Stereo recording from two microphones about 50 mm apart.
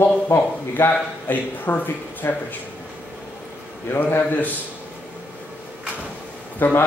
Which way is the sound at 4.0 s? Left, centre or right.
Left.